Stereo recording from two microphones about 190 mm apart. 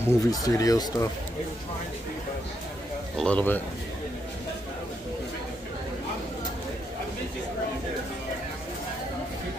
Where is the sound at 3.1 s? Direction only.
5° left (ahead or behind).